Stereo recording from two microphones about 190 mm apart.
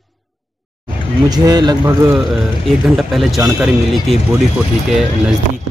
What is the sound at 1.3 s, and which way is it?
Speech, 20° right (ahead or behind).